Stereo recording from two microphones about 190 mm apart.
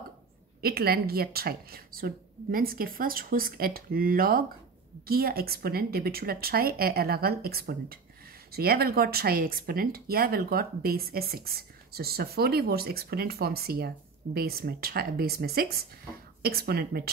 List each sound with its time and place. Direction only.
0.6 s speech: 55° right (ahead or behind)